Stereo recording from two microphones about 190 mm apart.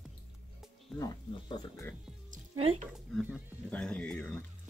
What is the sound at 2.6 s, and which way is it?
Speech, 30° right (ahead or behind).